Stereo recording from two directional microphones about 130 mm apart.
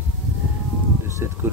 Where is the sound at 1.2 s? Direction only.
20° right (ahead or behind).